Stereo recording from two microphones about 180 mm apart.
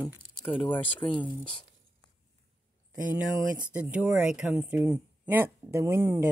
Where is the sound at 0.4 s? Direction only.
25° left (ahead or behind).